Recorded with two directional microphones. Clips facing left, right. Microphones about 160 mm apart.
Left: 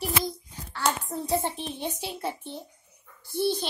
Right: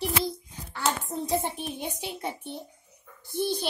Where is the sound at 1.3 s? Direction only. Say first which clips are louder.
Left 1 dB; 10° right (ahead or behind).